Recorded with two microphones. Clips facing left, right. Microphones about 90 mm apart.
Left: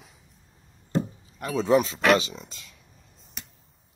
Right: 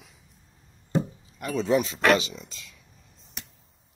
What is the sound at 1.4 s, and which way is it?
Speech, 35° left (ahead or behind).